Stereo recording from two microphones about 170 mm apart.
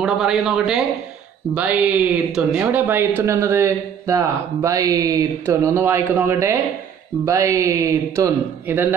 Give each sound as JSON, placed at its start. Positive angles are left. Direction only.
{"t": 0.0, "sound": "speech", "side_deg": -5}